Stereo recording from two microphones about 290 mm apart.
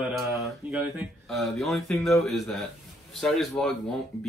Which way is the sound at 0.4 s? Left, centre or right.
Centre.